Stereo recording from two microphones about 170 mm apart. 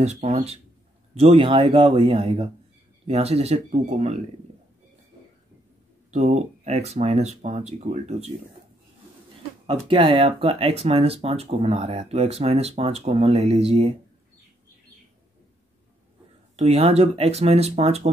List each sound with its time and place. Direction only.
0.0 s speech: 40° right (ahead or behind)
6.1 s speech: 40° right (ahead or behind)
9.7 s speech: 30° right (ahead or behind)
16.5 s speech: 40° right (ahead or behind)